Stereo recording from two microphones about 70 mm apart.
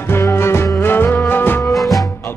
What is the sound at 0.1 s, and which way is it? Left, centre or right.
Music, left.